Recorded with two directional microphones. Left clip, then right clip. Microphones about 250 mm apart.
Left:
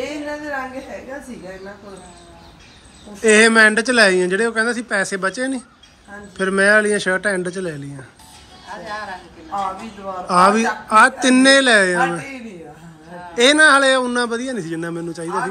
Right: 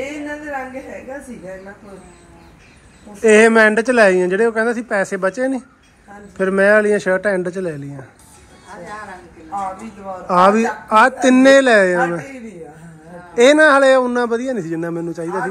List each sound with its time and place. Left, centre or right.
3.2 s speech: centre
8.6 s a woman's voice: left
10.2 s speech: centre
13.4 s speech: centre